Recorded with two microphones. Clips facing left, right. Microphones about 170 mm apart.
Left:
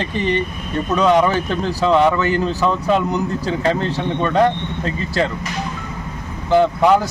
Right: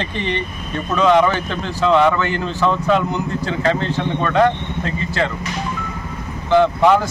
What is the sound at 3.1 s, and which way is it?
Speech, 40° left (ahead or behind).